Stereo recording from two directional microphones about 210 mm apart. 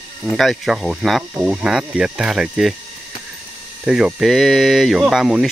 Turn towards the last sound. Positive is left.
turn(degrees=0)  # may be behind; listen again after turning